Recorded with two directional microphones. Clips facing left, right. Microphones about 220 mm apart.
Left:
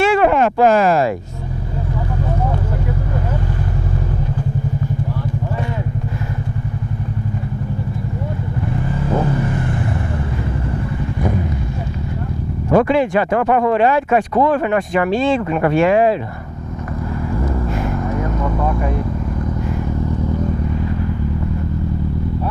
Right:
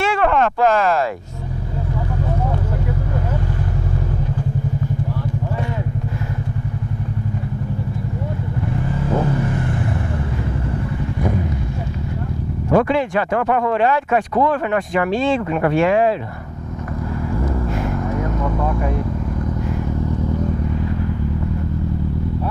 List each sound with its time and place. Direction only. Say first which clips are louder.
0.0 s a sound: left 4 dB; 10° left (ahead or behind)
12.6 s speech: left 2 dB; 10° left (ahead or behind)
17.5 s vehicle: left 1 dB; 20° left (ahead or behind)